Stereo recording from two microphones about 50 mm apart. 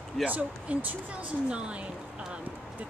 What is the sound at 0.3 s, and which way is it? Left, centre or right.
Speech, right.